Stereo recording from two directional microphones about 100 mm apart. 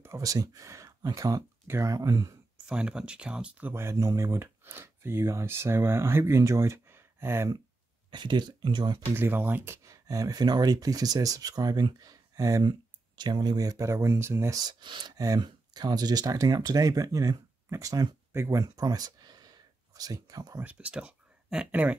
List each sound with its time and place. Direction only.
0.0 s speech: 30° right (ahead or behind)
2.6 s speech: 10° right (ahead or behind)
3.7 s speech: 25° right (ahead or behind)
8.1 s speech: 50° right (ahead or behind)
9.1 s speech: 20° right (ahead or behind)
9.8 s speech: 35° right (ahead or behind)
13.2 s speech: 45° right (ahead or behind); by 14.6 s 25° right (ahead or behind)
14.6 s speech: 50° right (ahead or behind)
20.6 s speech: 10° right (ahead or behind)